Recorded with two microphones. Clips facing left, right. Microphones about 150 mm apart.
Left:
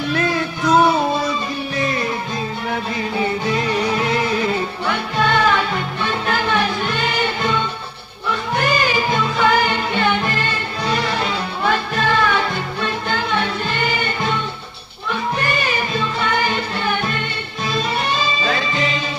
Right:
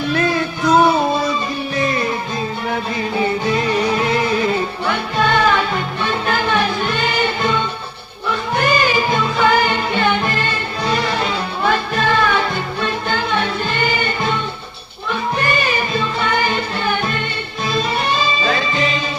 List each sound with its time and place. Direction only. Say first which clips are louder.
0.1 s music: right 2 dB; 45° right (ahead or behind)
2.7 s music: right 1 dB; 40° right (ahead or behind)
13.7 s music: right 2 dB; 45° right (ahead or behind)
15.3 s music: right 4 dB; 45° right (ahead or behind)